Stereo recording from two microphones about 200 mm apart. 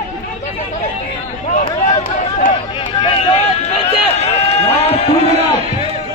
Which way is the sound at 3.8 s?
30° left (ahead or behind).